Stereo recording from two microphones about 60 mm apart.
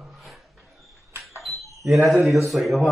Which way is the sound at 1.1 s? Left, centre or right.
Right.